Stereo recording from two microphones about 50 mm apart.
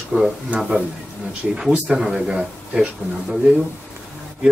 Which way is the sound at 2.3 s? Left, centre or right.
Right.